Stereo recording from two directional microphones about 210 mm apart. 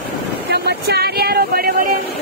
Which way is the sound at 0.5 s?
50° right (ahead or behind).